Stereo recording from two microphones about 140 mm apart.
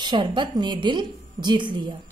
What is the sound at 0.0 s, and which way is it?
Speech, 35° right (ahead or behind).